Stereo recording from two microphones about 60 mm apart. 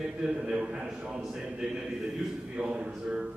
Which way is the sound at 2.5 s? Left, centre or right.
Centre.